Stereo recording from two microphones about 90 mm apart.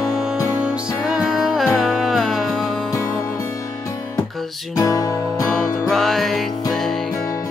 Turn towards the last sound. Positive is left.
turn(degrees=5)  # may be behind; listen again after turning